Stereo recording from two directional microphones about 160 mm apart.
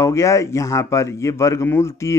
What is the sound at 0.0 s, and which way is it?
A man's voice, 20° left (ahead or behind).